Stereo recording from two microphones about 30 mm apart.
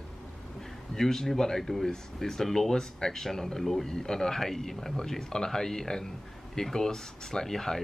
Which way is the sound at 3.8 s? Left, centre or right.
Centre.